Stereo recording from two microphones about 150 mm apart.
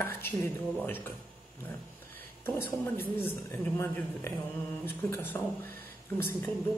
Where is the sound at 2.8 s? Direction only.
15° left (ahead or behind).